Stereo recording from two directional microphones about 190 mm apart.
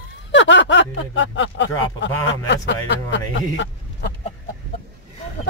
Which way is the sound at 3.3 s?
80° left.